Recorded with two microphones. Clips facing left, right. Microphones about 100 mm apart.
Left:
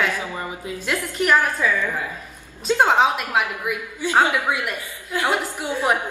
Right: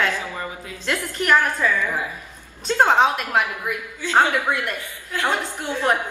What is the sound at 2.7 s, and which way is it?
A woman's voice, 5° left (ahead or behind).